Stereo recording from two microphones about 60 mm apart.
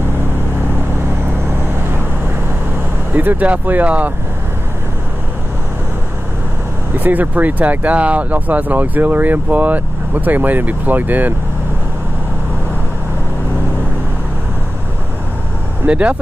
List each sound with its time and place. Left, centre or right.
3.2 s speech: right
7.0 s speech: right
15.9 s speech: right